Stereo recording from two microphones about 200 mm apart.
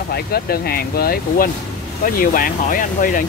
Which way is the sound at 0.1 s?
50° left (ahead or behind).